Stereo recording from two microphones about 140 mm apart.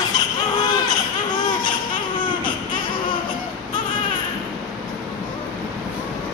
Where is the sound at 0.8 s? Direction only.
30° left (ahead or behind).